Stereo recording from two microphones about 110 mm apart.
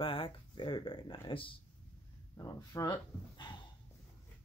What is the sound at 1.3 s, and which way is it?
Speech, 55° left (ahead or behind).